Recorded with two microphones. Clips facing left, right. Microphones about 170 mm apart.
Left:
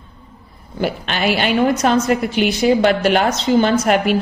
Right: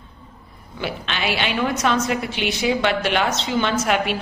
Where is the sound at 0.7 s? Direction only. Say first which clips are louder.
Left 6 dB; 45° left (ahead or behind).